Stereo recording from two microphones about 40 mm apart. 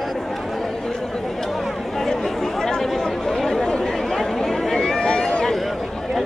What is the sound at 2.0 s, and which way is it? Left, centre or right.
Chatter, centre.